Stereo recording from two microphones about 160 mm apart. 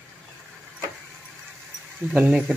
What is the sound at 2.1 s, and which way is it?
Speech, 5° right (ahead or behind).